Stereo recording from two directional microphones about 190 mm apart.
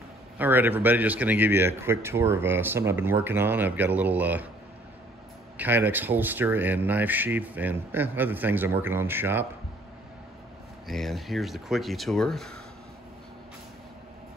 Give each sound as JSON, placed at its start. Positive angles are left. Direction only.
{"t": 0.4, "sound": "speech", "side_deg": -10}
{"t": 5.6, "sound": "speech", "side_deg": -10}
{"t": 10.9, "sound": "speech", "side_deg": 0}